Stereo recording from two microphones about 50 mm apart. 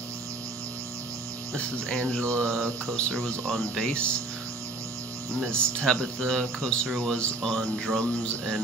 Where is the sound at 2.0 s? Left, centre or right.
Left.